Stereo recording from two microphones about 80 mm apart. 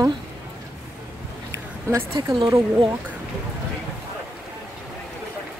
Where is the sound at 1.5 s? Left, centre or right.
Right.